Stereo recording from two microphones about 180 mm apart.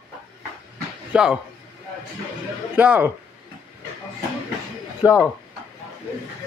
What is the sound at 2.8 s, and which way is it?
Speech, 10° right (ahead or behind).